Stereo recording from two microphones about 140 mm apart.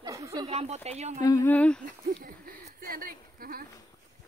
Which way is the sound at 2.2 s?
90° right.